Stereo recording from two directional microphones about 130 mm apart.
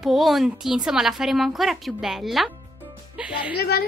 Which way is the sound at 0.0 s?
Centre (ahead or behind).